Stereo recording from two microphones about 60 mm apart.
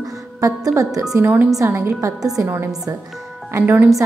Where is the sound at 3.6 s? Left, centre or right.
Right.